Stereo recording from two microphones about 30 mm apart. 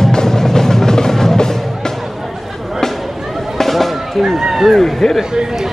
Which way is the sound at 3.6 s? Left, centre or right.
Centre.